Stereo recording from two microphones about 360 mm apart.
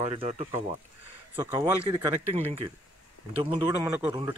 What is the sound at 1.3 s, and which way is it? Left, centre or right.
Speech, centre.